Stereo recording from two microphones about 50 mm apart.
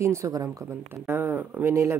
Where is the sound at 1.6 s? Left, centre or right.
Right.